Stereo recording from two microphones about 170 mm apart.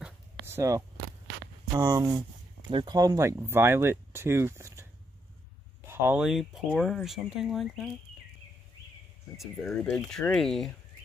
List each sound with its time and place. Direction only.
0.5 s speech: 15° right (ahead or behind)
5.9 s speech: 15° right (ahead or behind)
6.2 s speech: centre (ahead or behind)
9.4 s speech: 5° left (ahead or behind)